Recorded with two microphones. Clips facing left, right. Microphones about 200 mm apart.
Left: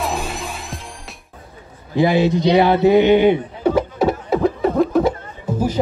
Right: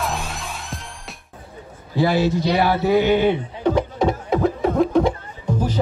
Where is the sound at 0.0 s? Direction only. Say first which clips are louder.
Left 3 dB; centre (ahead or behind).